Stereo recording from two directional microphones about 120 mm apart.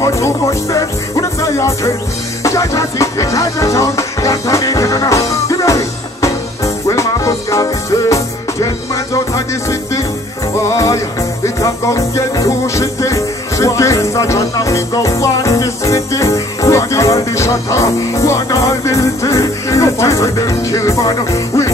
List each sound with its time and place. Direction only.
0.0 s music: 25° left (ahead or behind)